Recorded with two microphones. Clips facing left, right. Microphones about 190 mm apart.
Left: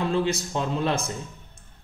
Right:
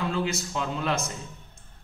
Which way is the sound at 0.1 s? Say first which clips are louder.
Left 4 dB; 30° left (ahead or behind).